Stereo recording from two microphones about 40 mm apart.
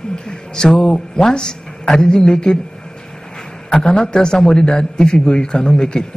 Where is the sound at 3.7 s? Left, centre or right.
Centre.